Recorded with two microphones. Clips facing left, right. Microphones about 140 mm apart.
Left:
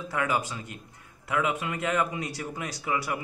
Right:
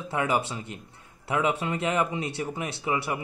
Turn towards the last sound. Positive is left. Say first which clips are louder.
# right 2 dB
turn(degrees=-25)  # may be behind; listen again after turning